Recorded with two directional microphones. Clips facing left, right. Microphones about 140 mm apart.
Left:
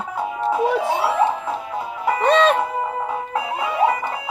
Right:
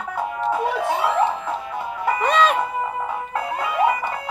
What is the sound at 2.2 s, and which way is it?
Music, 30° left (ahead or behind).